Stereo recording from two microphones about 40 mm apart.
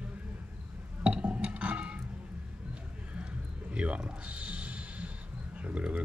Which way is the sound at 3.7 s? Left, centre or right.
Right.